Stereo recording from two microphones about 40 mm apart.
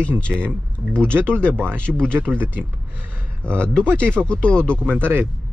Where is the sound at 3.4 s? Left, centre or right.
Left.